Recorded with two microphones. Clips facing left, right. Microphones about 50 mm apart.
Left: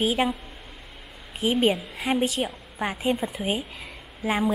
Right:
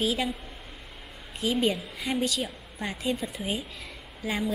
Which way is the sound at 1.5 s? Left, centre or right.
Left.